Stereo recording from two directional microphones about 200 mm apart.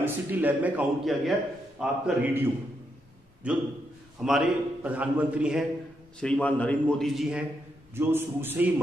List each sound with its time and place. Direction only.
0.0 s a man's voice: 10° right (ahead or behind)